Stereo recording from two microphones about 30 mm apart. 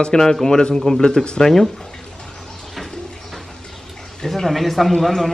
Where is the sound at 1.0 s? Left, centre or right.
Left.